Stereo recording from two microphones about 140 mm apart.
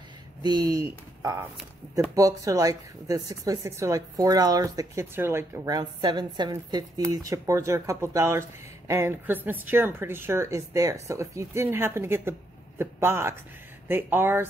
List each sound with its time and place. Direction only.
0.4 s speech: 25° right (ahead or behind)
5.8 s a woman's voice: 30° right (ahead or behind); by 14.5 s 15° right (ahead or behind)